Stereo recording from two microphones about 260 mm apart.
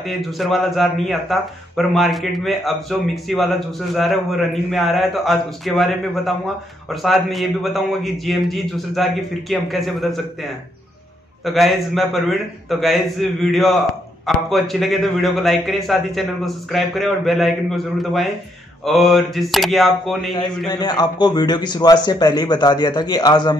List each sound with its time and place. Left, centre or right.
0.0 s speech: centre
20.3 s a man's voice: centre